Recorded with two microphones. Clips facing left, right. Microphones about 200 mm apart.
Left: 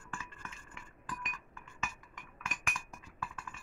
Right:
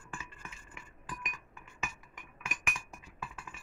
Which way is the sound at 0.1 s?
15° right (ahead or behind).